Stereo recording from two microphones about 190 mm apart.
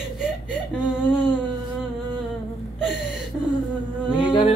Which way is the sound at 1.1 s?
25° left (ahead or behind).